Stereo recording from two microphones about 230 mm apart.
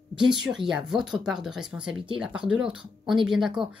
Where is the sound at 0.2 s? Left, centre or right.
Centre.